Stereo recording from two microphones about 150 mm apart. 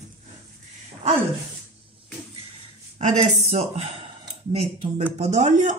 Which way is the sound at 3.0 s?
50° right (ahead or behind).